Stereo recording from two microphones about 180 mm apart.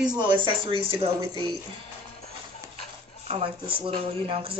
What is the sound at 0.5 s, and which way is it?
Speech, 30° right (ahead or behind).